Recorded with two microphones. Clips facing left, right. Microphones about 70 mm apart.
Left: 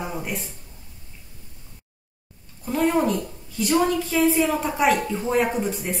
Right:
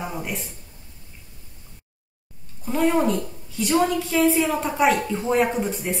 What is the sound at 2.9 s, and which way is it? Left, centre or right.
A woman's voice, centre.